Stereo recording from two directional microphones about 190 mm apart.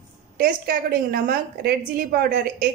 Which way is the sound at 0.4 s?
50° right (ahead or behind).